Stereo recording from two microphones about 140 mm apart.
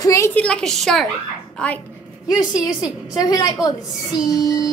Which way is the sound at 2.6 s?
30° left (ahead or behind).